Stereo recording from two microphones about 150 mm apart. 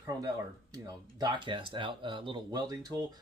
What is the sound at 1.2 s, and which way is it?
Speech, 30° right (ahead or behind).